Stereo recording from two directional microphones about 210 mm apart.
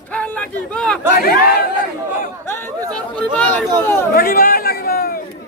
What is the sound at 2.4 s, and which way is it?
Chatter, 10° left (ahead or behind).